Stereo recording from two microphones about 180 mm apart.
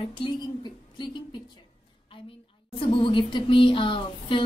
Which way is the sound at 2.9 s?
30° left (ahead or behind).